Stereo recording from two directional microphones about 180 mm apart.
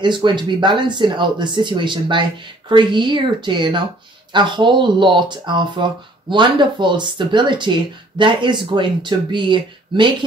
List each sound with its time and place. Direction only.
0.0 s speech: 25° right (ahead or behind)